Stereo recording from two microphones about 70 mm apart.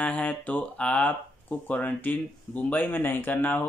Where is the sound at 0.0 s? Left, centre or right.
Left.